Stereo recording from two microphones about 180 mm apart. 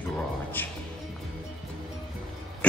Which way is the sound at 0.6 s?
10° left (ahead or behind).